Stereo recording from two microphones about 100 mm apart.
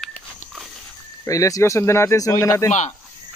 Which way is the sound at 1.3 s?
35° left (ahead or behind).